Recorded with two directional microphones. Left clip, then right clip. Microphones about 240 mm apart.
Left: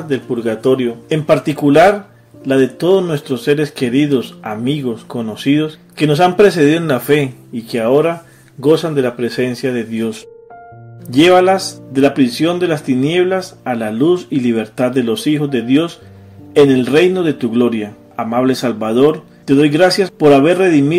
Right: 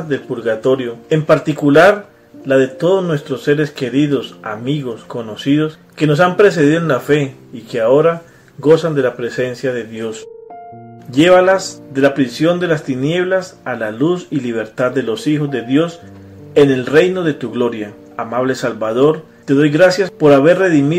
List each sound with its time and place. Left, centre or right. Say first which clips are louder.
0.1 s speech: even; left